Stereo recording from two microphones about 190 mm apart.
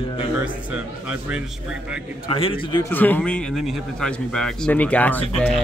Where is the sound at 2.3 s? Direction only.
30° left (ahead or behind).